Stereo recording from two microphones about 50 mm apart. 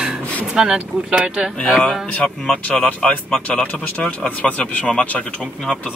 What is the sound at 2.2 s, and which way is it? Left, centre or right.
Speech, centre.